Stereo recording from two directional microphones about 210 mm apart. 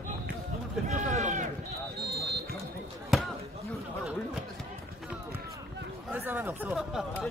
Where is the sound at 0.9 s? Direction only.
35° right (ahead or behind).